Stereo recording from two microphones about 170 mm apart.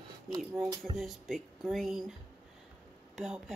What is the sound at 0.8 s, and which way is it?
Speech, centre (ahead or behind).